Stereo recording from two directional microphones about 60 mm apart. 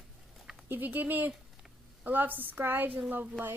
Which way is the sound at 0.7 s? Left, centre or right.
Right.